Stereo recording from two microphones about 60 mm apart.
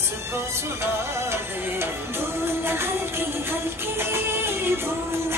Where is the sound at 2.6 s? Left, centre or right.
Right.